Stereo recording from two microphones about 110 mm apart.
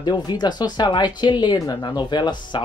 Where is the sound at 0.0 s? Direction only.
40° left (ahead or behind).